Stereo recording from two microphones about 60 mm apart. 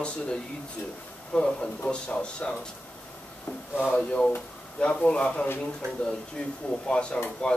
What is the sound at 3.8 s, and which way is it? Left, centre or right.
Speech, left.